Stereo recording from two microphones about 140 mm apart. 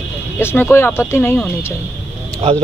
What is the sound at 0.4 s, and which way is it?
Speech, 15° left (ahead or behind).